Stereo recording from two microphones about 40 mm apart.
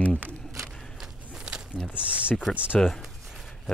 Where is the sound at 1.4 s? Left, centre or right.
Right.